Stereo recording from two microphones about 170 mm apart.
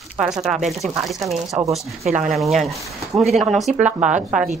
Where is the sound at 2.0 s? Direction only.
45° right (ahead or behind).